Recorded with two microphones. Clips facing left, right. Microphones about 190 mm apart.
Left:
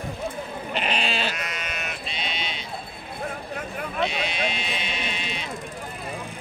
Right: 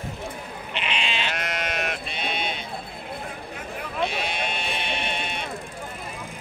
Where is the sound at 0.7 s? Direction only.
40° left (ahead or behind).